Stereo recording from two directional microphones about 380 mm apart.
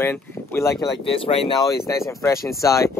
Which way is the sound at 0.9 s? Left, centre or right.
Centre.